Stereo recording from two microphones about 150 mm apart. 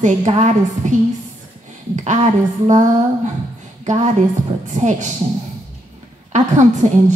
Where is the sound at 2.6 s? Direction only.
55° right (ahead or behind).